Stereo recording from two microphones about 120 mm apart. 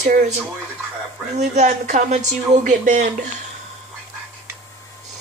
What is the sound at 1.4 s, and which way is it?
Speech, 85° right.